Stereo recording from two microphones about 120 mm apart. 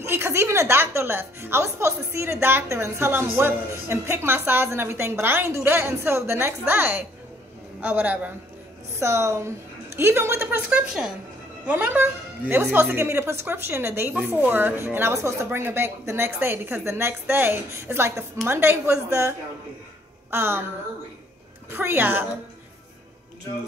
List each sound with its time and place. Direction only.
0.0 s a woman's voice: 20° right (ahead or behind)
10.7 s a woman's voice: 5° right (ahead or behind)
11.6 s a woman's voice: 15° right (ahead or behind)
21.6 s a woman's voice: 20° right (ahead or behind)